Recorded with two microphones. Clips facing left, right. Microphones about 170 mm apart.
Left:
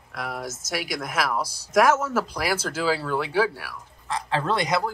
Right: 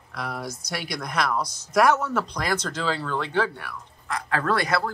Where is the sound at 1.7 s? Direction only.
Centre (ahead or behind).